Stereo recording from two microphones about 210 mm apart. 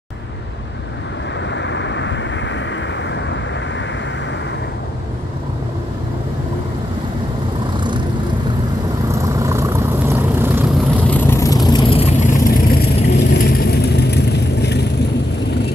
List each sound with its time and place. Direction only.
1.5 s vehicle: 60° left (ahead or behind)
9.2 s vehicle: 15° right (ahead or behind)
11.1 s vehicle: 10° left (ahead or behind); by 15.0 s 50° left (ahead or behind)